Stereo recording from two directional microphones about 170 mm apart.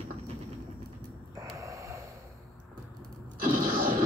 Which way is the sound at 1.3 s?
20° right (ahead or behind).